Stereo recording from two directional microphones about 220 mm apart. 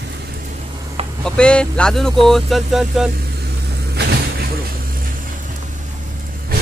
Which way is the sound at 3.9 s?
50° right (ahead or behind).